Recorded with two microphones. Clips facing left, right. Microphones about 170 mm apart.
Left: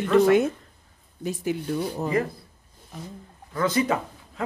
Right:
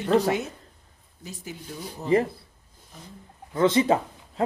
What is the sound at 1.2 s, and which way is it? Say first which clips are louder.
Speech: left 12 dB; 65° left (ahead or behind).